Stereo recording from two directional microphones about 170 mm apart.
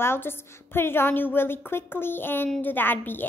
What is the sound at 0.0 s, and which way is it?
A woman's voice, 15° left (ahead or behind).